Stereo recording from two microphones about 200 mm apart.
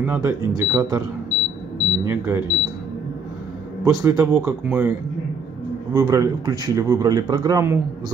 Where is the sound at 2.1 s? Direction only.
15° right (ahead or behind).